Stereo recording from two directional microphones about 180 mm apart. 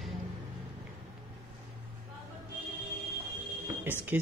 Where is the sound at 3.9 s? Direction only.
10° right (ahead or behind).